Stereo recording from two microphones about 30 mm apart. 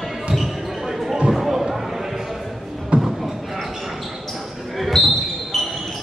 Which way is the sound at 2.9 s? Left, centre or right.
Right.